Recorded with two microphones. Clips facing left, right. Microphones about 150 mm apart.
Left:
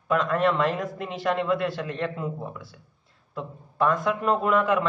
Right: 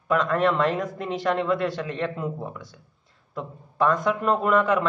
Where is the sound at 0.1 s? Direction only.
5° left (ahead or behind).